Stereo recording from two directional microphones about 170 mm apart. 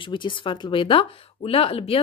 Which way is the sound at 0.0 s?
30° left (ahead or behind).